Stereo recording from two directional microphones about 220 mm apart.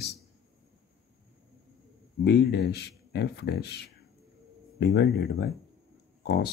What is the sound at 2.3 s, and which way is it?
Speech, 50° left (ahead or behind).